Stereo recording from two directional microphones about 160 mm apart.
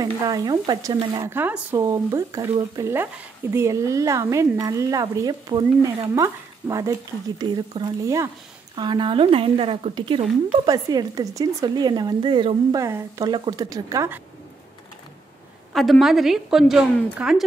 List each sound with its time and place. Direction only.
0.0 s speech: 25° right (ahead or behind)
15.7 s a woman's voice: centre (ahead or behind)